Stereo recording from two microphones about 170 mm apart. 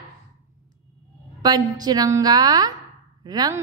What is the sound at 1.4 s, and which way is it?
A woman's voice, 25° right (ahead or behind).